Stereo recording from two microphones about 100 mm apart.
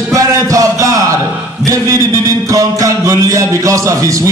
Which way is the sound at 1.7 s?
35° right (ahead or behind).